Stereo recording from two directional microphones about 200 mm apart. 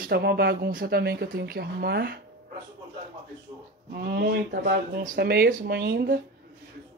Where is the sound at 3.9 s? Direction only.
55° right (ahead or behind).